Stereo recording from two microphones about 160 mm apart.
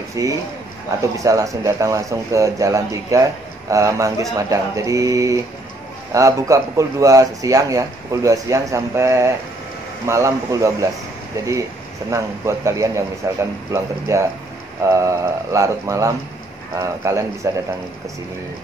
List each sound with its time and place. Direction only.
0.1 s a man's voice: 20° right (ahead or behind)